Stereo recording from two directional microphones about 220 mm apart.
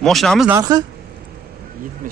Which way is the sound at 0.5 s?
15° right (ahead or behind).